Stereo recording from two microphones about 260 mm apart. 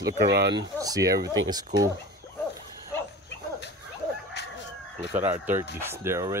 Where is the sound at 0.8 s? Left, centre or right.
Centre.